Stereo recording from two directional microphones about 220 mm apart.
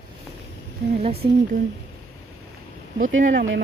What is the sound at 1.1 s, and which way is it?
Speech, 45° right (ahead or behind).